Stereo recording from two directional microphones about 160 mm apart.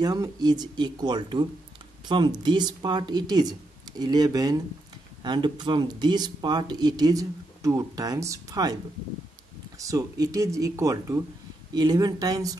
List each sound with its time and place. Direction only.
0.0 s speech: 25° right (ahead or behind)
9.8 s speech: 20° right (ahead or behind)